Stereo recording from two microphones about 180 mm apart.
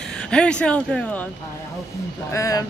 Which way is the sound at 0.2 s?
5° left (ahead or behind).